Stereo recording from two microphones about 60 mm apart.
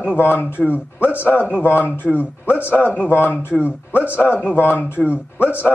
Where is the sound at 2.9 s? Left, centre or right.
Left.